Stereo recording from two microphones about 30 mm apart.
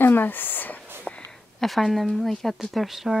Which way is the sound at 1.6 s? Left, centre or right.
Centre.